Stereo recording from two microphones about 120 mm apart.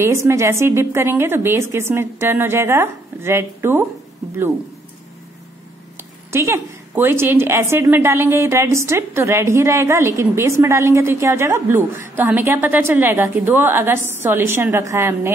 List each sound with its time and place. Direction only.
0.0 s a woman's voice: 25° right (ahead or behind)
6.3 s a woman's voice: 20° right (ahead or behind)